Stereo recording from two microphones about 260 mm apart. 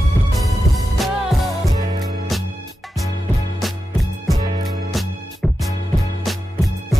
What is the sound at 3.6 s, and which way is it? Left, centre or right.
Music, centre.